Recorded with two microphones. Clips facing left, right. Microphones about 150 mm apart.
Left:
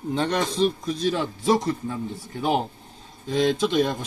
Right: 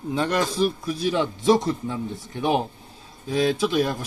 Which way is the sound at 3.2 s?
10° right (ahead or behind).